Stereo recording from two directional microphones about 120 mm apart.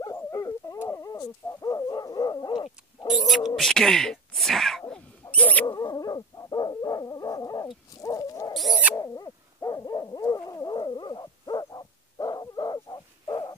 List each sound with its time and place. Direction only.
0.0 s dog: 30° left (ahead or behind)
3.2 s speech: centre (ahead or behind)
5.3 s mouse: 15° left (ahead or behind)
5.7 s dog: 30° left (ahead or behind)